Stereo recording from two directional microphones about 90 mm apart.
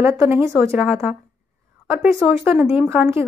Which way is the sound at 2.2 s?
20° right (ahead or behind).